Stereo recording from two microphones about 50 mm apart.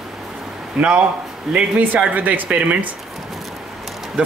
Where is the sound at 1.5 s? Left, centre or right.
Right.